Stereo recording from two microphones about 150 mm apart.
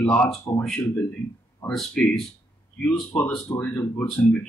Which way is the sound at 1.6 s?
5° left (ahead or behind).